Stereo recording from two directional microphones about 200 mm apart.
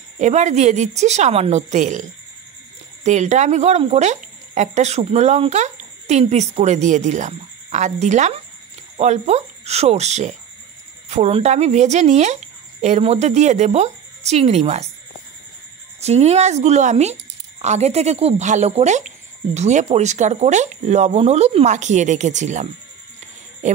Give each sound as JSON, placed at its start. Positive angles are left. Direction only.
{"t": 0.2, "sound": "speech", "side_deg": -35}
{"t": 16.0, "sound": "speech", "side_deg": -30}
{"t": 23.6, "sound": "a sound", "side_deg": -35}